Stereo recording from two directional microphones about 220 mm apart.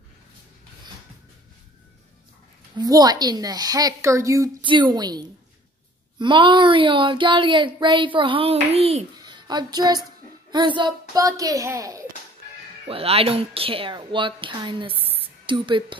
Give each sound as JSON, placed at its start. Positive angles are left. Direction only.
{"t": 2.8, "sound": "a woman's voice", "side_deg": -15}
{"t": 12.8, "sound": "speech", "side_deg": -25}